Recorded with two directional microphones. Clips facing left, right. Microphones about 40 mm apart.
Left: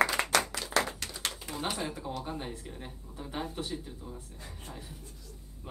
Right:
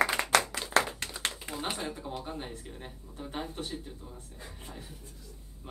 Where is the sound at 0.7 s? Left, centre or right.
Right.